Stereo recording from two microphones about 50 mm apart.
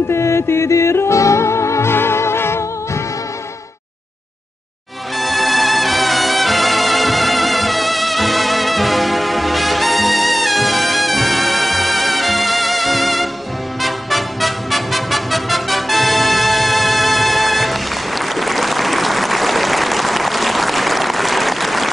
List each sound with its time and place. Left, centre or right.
0.1 s music: left
5.2 s music: centre